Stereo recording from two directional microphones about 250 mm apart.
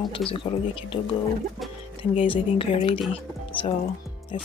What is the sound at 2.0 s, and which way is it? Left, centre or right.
Speech, left.